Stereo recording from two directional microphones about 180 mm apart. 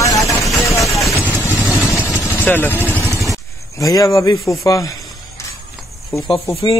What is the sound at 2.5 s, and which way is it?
Speech, 10° left (ahead or behind).